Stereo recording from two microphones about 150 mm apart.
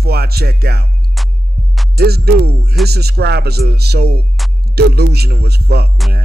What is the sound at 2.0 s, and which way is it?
Speech, 90° right.